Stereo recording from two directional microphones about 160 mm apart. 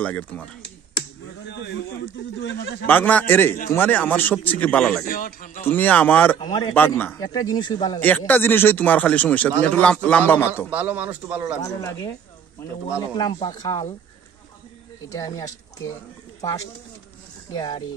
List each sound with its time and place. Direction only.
0.0 s speech: 10° left (ahead or behind)
2.5 s speech: 90° left
2.9 s speech: 10° left (ahead or behind)
5.0 s speech: 60° left (ahead or behind)
5.7 s speech: 10° left (ahead or behind)
6.3 s speech: 25° left (ahead or behind)
6.7 s speech: 10° left (ahead or behind)
7.2 s speech: 25° left (ahead or behind)
8.3 s speech: 15° left (ahead or behind)
10.7 s speech: 10° right (ahead or behind)
11.6 s speech: 20° left (ahead or behind)
13.1 s speech: 30° left (ahead or behind)
15.0 s speech: 20° left (ahead or behind)